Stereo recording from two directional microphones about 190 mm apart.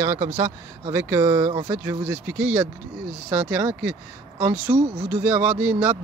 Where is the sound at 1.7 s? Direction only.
10° right (ahead or behind).